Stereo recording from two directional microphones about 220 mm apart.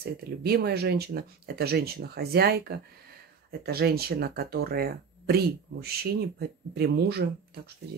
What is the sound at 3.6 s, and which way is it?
Speech, 45° right (ahead or behind).